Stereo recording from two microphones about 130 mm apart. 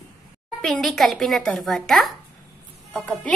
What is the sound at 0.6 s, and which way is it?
A woman's voice, centre (ahead or behind).